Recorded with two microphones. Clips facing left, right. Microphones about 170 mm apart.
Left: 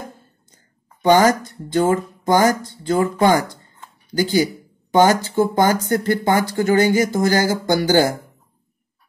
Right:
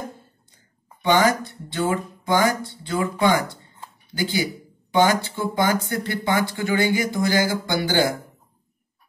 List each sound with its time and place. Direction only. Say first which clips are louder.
1.0 s speech: left 5 dB; 40° left (ahead or behind)